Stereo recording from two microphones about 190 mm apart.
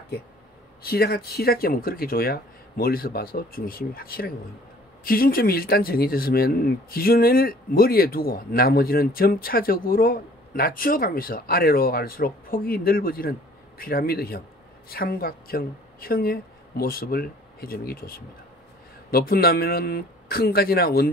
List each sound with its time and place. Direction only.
0.8 s speech: 55° left (ahead or behind)